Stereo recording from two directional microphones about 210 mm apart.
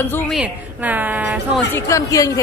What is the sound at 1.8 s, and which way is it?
Speech, 15° left (ahead or behind).